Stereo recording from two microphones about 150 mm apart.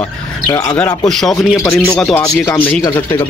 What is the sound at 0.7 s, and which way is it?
A man's voice, 5° left (ahead or behind).